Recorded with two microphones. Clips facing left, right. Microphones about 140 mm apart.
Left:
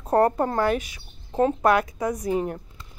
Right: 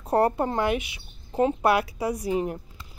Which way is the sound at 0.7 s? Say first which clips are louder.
Left 2 dB; 40° left (ahead or behind).